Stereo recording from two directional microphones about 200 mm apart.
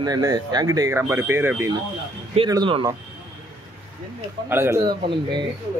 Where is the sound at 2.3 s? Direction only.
25° right (ahead or behind).